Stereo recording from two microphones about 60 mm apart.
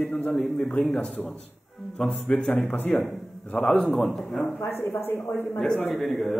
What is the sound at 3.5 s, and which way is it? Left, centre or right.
Speech, centre.